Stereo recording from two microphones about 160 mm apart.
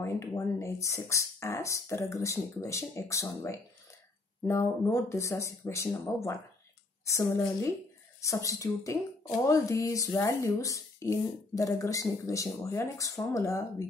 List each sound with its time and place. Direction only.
0.0 s speech: 15° left (ahead or behind)